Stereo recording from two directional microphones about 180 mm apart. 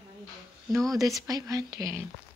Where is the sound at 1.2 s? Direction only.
20° right (ahead or behind).